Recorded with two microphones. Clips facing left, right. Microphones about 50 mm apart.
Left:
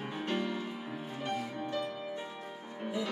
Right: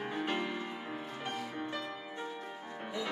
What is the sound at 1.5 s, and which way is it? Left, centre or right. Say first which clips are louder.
Music: left 3 dB; centre.